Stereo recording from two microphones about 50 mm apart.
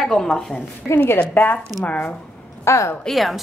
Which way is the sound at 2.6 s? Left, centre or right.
Left.